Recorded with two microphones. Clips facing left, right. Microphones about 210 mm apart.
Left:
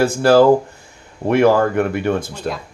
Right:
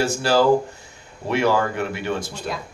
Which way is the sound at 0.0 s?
55° left (ahead or behind).